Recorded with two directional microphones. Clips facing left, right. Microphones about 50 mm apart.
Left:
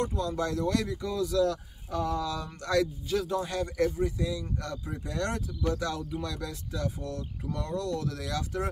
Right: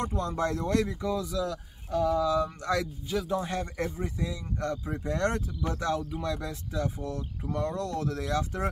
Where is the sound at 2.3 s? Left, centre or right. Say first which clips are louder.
Right 1 dB; right.